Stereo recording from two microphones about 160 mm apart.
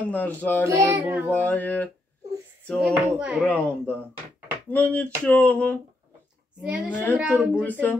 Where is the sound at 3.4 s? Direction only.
10° left (ahead or behind).